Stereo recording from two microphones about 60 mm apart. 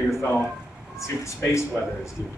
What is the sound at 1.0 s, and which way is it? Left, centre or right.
Speech, left.